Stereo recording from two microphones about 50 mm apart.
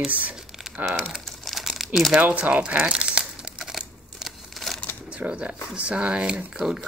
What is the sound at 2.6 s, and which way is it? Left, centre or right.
Crumpling, right.